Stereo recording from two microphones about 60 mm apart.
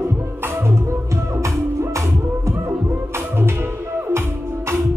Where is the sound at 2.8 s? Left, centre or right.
Right.